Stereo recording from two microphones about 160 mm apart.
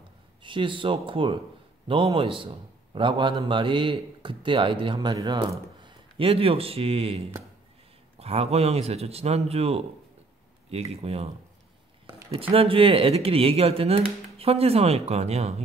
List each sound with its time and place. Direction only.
0.4 s a man's voice: 30° right (ahead or behind)